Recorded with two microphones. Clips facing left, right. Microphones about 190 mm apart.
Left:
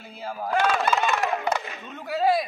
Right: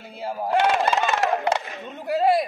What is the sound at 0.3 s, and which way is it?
Speech, 20° right (ahead or behind).